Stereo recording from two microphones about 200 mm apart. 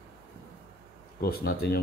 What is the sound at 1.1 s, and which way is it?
Speech, 50° left (ahead or behind).